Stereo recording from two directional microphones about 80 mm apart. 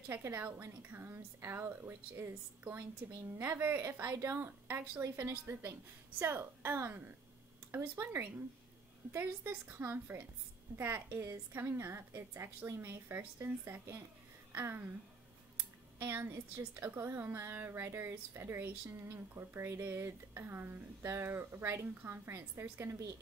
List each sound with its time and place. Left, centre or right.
0.1 s a woman's voice: right
16.0 s a woman's voice: right